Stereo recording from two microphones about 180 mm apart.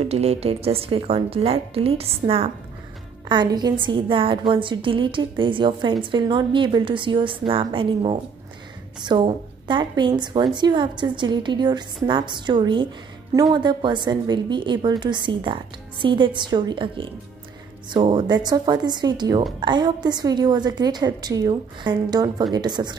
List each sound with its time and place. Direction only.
0.0 s a woman's voice: 35° right (ahead or behind)